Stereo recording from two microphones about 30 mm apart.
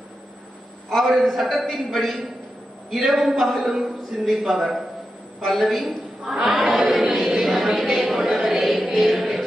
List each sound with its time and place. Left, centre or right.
1.0 s a man's voice: centre
2.9 s music: centre
3.4 s a man's voice: centre
3.7 s music: centre
4.5 s a man's voice: centre
6.3 s music: centre
6.6 s a sound: centre
7.2 s speech: centre
8.6 s music: centre